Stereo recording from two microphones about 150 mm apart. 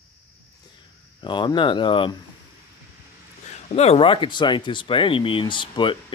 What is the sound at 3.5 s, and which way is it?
Speech, 45° left (ahead or behind).